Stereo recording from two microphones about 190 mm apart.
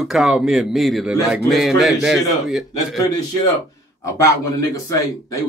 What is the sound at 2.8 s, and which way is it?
Speech, 20° left (ahead or behind).